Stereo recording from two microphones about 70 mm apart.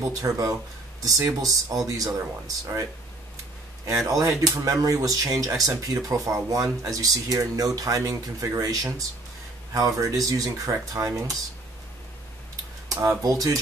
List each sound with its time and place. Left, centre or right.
0.0 s speech: right
3.8 s speech: right
5.4 s speech: right
5.9 s speech: right
12.8 s a sound: right
13.2 s speech: right